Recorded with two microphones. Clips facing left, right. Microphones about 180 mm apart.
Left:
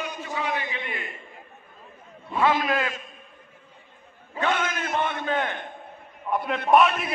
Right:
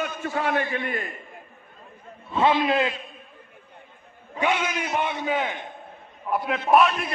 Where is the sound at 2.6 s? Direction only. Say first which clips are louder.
Right 4 dB; 20° right (ahead or behind).